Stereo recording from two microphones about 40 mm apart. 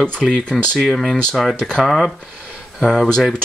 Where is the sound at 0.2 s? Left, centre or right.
Centre.